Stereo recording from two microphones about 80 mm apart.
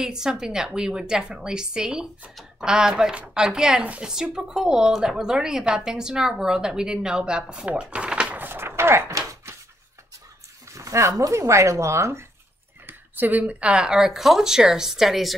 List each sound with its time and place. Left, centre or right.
0.0 s speech: centre; by 9.0 s right
9.1 s a sound: right
10.7 s speech: right
12.8 s speech: right; by 15.3 s centre